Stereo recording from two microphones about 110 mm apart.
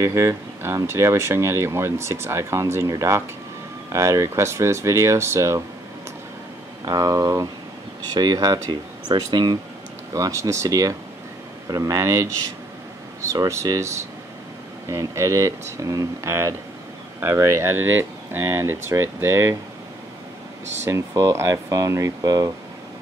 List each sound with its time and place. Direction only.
0.0 s speech: 25° right (ahead or behind)
6.8 s speech: 35° right (ahead or behind)
10.1 s speech: 30° right (ahead or behind)
13.3 s speech: 30° right (ahead or behind)
20.8 s speech: 30° right (ahead or behind)